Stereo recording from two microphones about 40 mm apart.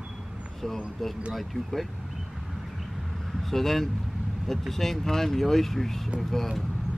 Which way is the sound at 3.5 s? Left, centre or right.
Centre.